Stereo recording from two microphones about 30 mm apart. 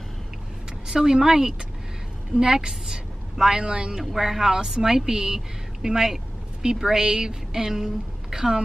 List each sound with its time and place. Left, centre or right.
0.8 s a woman's voice: right
4.0 s a woman's voice: centre